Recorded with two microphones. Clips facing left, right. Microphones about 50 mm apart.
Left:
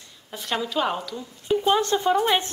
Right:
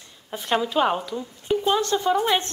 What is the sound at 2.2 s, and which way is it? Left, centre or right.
Speech, centre.